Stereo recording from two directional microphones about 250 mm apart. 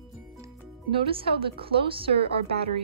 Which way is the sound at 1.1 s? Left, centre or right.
Right.